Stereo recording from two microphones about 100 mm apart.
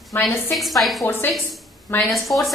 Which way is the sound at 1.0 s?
20° left (ahead or behind).